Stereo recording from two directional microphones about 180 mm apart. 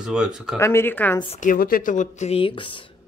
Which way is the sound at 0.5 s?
15° left (ahead or behind).